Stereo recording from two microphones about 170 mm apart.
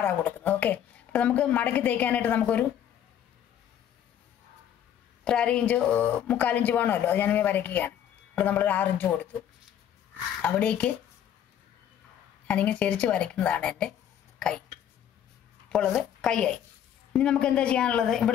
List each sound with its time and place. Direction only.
0.0 s speech: 10° left (ahead or behind)
5.2 s speech: 5° left (ahead or behind)
10.4 s speech: 5° left (ahead or behind)
12.4 s speech: 10° left (ahead or behind)
15.7 s a woman's voice: 5° left (ahead or behind)